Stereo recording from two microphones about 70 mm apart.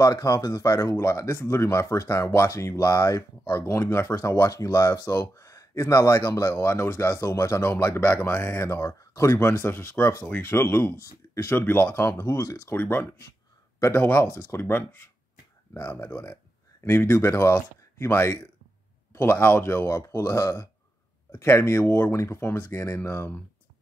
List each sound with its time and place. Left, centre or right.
0.0 s speech: left
6.5 s speech: left
13.7 s speech: left